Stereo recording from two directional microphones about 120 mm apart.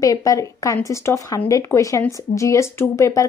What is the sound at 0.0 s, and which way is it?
Speech, 30° left (ahead or behind).